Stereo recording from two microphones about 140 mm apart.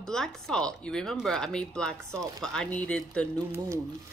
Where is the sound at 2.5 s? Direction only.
5° left (ahead or behind).